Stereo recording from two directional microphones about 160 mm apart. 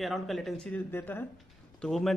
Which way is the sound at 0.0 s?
Centre (ahead or behind).